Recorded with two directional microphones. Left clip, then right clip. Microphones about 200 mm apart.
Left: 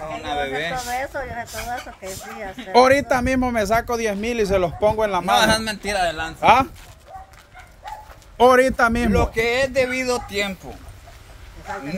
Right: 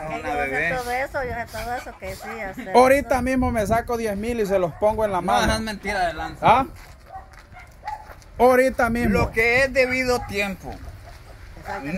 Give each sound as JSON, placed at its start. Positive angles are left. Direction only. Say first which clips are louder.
{"t": 0.1, "sound": "a sound", "louder": "right 1 dB", "side_deg": 5}
{"t": 0.7, "sound": "speech", "louder": "right 1 dB", "side_deg": -45}
{"t": 2.7, "sound": "a man's voice", "louder": "left 1 dB", "side_deg": 0}
{"t": 5.3, "sound": "a man's voice", "louder": "left 4 dB", "side_deg": 55}
{"t": 6.4, "sound": "speech", "louder": "left 2 dB", "side_deg": 5}
{"t": 8.4, "sound": "a man's voice", "louder": "left 2 dB", "side_deg": 5}